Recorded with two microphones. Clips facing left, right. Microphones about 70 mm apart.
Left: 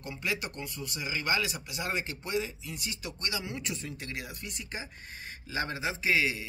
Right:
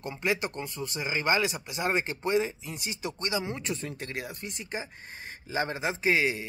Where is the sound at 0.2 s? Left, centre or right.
Right.